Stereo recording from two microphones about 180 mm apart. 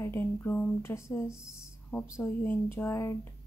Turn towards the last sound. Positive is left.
turn(degrees=15)  # may be behind; listen again after turning